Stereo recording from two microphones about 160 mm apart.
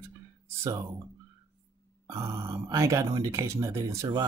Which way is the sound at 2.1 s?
20° right (ahead or behind).